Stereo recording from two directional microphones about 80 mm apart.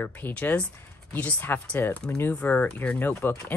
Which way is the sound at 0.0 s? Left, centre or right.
Left.